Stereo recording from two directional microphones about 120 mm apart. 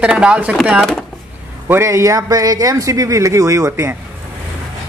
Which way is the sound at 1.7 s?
25° right (ahead or behind).